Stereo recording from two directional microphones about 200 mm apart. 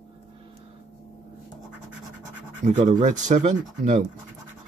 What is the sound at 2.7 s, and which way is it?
Speech, 35° right (ahead or behind).